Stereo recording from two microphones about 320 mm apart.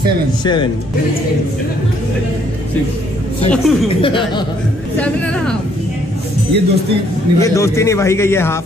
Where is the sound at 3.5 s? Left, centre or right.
Centre.